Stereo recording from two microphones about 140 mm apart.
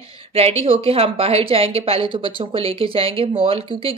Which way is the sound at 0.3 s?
45° right (ahead or behind).